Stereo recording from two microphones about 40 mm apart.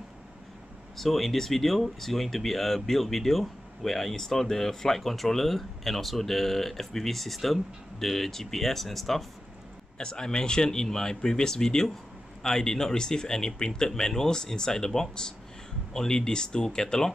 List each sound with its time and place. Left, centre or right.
0.9 s speech: centre
9.9 s speech: left